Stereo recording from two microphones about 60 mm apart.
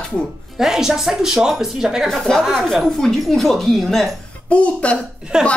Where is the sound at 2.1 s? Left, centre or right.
Centre.